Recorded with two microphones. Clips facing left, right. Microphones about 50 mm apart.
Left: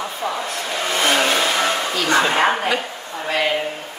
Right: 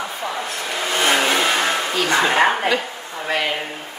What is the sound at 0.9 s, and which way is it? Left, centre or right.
Vehicle, right.